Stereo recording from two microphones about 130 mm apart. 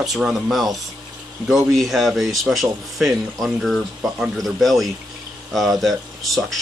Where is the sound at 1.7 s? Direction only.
Centre (ahead or behind).